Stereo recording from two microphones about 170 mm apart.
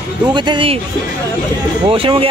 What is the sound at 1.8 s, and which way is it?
Speech, 30° right (ahead or behind).